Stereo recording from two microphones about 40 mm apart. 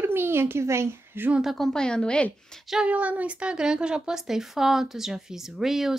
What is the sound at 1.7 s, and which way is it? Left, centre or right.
Speech, centre.